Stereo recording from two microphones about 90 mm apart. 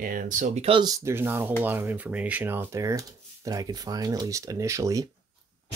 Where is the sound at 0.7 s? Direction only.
90° right.